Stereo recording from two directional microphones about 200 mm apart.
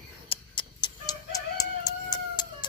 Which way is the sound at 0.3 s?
25° left (ahead or behind).